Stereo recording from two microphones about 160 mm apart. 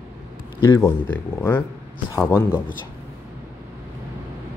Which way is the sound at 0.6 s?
25° left (ahead or behind).